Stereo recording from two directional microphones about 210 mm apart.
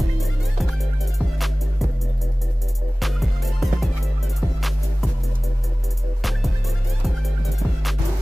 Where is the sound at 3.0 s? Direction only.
Centre (ahead or behind).